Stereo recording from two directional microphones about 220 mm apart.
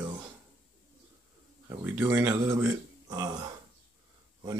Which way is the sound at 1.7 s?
10° right (ahead or behind).